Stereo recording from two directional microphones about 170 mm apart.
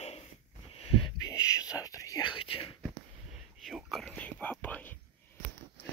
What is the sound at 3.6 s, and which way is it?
Whispering, centre (ahead or behind).